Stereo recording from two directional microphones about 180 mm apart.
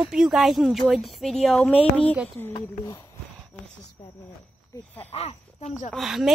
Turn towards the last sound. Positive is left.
turn(degrees=0)  # may be behind; listen again after turning